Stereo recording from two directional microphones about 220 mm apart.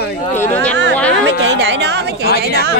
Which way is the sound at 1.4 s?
55° right (ahead or behind).